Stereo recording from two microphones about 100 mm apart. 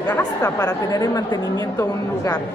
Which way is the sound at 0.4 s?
35° left (ahead or behind).